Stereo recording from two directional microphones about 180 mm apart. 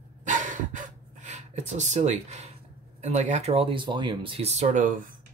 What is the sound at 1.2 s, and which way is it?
Speech, 40° right (ahead or behind).